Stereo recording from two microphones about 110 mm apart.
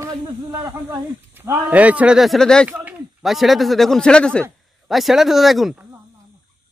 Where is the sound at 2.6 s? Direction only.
15° right (ahead or behind).